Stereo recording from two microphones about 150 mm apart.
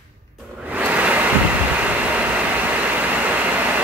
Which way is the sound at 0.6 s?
10° right (ahead or behind).